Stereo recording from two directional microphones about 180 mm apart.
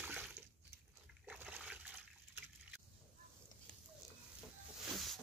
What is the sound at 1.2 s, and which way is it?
Splash, 10° right (ahead or behind).